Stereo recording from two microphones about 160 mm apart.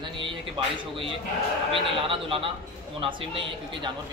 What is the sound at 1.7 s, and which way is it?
Speech, 35° right (ahead or behind).